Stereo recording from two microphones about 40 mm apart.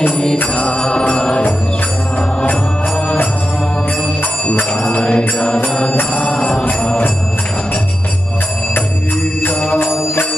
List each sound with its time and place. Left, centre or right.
0.6 s music: left
4.5 s mantra: left
6.1 s music: left
9.8 s music: left